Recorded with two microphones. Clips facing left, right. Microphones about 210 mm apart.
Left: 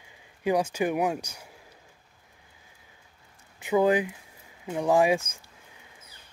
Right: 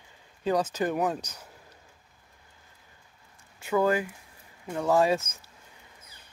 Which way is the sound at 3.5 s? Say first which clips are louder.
Left 2 dB; 15° left (ahead or behind).